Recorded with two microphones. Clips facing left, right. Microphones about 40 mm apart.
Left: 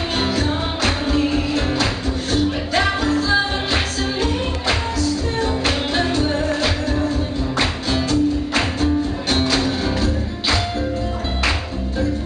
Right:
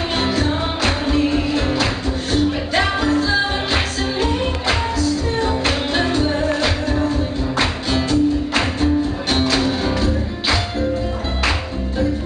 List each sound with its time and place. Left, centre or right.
0.2 s music: centre